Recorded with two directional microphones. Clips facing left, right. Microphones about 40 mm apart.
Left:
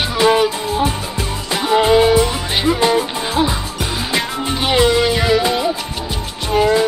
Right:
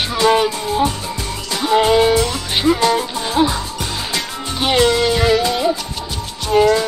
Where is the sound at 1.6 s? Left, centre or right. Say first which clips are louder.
Left 1 dB; centre.